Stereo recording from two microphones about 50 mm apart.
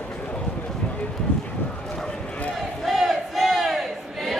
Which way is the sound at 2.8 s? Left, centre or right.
Centre.